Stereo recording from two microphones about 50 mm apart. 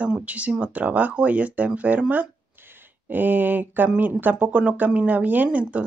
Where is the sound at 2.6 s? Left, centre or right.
Right.